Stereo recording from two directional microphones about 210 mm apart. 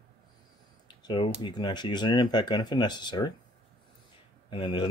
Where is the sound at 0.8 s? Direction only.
20° left (ahead or behind).